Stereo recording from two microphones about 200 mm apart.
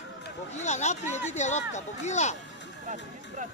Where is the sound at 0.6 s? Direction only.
35° left (ahead or behind).